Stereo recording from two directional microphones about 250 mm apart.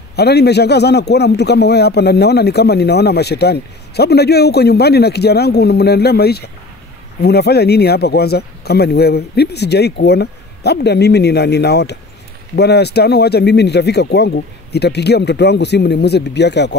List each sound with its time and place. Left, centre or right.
0.1 s a man's voice: left